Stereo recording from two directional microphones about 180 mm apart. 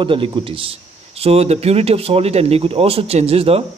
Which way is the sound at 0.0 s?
30° right (ahead or behind).